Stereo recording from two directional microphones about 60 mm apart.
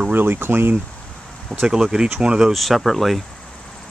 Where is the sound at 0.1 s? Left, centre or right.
Right.